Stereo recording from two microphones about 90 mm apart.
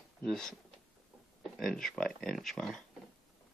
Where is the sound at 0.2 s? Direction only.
5° left (ahead or behind).